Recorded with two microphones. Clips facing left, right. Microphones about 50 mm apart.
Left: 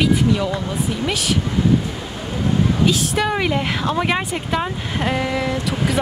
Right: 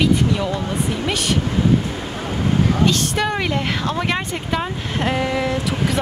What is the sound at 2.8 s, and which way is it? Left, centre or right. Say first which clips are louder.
A woman's voice: even; centre.